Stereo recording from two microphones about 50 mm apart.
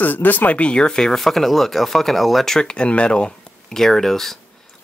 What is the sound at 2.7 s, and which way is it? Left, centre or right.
Speech, left.